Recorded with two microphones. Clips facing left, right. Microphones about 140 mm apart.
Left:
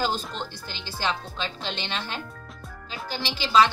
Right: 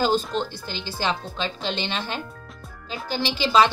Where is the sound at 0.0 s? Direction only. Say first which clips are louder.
Right 6 dB; centre (ahead or behind).